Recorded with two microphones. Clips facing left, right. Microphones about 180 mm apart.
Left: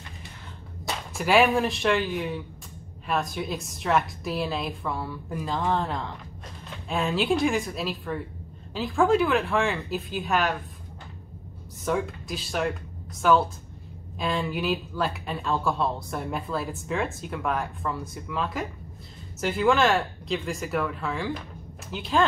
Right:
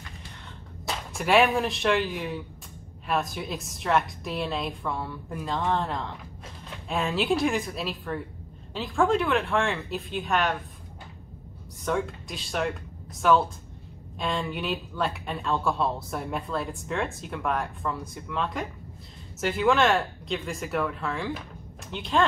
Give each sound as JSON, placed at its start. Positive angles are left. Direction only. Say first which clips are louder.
{"t": 0.8, "sound": "speech", "louder": "left 1 dB", "side_deg": 0}
{"t": 11.8, "sound": "speech", "louder": "left 1 dB", "side_deg": 0}